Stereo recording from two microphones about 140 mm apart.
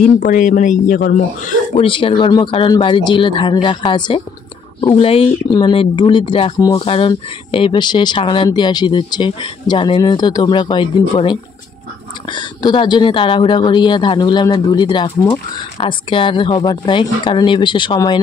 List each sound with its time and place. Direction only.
0.0 s speech: 70° left (ahead or behind)
1.8 s speech: 40° left (ahead or behind)